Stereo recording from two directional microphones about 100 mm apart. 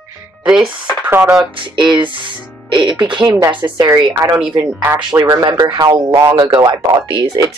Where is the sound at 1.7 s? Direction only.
50° right (ahead or behind).